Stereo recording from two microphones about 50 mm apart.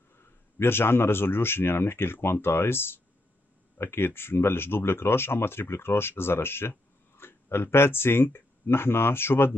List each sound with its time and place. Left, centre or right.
0.1 s speech: left